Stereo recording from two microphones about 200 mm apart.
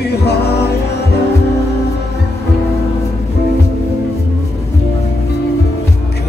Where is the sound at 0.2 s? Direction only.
55° left (ahead or behind).